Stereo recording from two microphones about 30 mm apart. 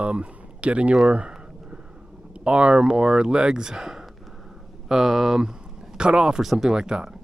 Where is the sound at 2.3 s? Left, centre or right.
Right; by 5.4 s centre.